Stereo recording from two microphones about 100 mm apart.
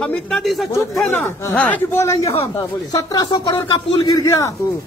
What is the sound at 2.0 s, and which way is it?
A woman's voice, 30° left (ahead or behind).